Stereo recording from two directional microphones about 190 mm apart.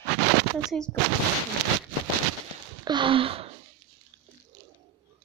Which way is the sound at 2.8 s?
25° right (ahead or behind).